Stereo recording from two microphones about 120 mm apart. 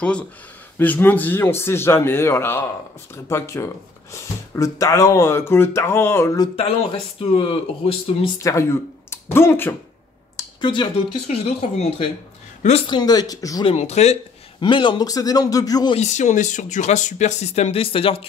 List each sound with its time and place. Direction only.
0.7 s speech: 15° left (ahead or behind)
6.5 s speech: 50° left (ahead or behind)
8.4 s speech: 25° left (ahead or behind)
10.3 s a sound: 40° left (ahead or behind)
11.2 s speech: 60° left (ahead or behind)
12.8 s a man's voice: 35° left (ahead or behind)
13.7 s speech: 60° left (ahead or behind)
14.6 s a man's voice: 40° left (ahead or behind)
16.0 s speech: 75° left (ahead or behind); by 18.2 s 50° left (ahead or behind)